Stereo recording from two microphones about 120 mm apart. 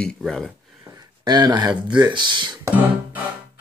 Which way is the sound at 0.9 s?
40° right (ahead or behind).